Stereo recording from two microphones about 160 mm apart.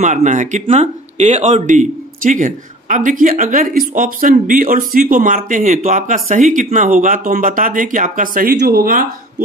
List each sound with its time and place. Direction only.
0.0 s speech: 50° right (ahead or behind); by 9.0 s 65° right (ahead or behind)